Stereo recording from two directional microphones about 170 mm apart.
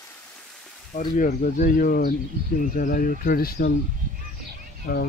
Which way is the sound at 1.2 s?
50° left (ahead or behind).